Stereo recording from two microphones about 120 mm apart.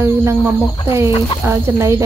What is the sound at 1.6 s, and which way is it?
Speech, 20° right (ahead or behind).